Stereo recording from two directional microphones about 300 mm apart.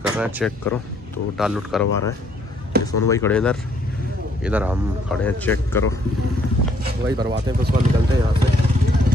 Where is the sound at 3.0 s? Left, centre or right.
Centre.